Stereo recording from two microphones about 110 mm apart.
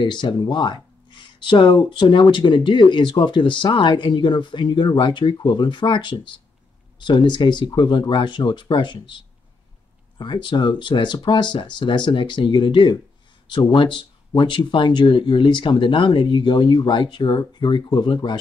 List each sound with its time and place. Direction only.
0.0 s speech: 45° left (ahead or behind)